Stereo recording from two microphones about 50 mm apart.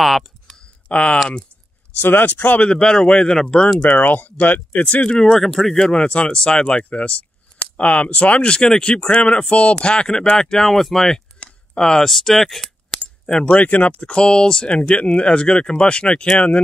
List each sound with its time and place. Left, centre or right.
0.0 s typing: centre
0.8 s speech: left
2.0 s speech: left
2.3 s speech: left
2.7 s speech: centre
3.8 s speech: left
4.8 s speech: left
5.8 s speech: left; by 11.1 s centre
11.3 s a sound: centre
13.3 s speech: centre
13.6 s speech: left